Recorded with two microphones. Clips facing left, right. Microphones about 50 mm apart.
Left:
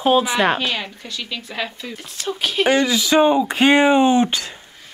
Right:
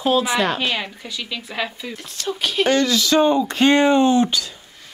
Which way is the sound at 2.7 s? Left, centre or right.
Centre.